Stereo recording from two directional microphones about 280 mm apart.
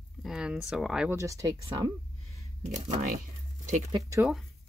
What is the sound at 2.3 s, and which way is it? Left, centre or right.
Speech, right.